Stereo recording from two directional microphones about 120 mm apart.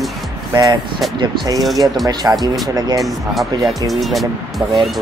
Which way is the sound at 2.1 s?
35° right (ahead or behind).